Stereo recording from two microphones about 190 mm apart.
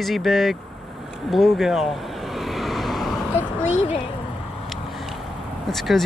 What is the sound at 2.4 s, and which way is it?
Vehicle, centre (ahead or behind).